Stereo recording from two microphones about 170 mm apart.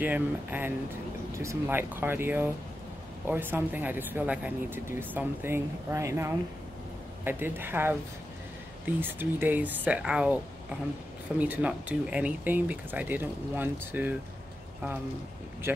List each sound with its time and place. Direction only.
0.0 s speech: 10° right (ahead or behind)